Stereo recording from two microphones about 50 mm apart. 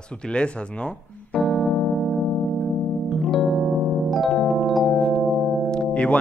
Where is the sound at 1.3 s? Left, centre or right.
Centre.